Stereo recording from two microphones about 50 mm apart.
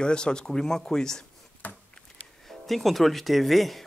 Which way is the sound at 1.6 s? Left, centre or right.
Left.